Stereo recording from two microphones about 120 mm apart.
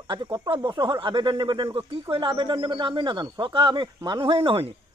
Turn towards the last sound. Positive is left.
turn(degrees=-50)  # may be behind; listen again after turning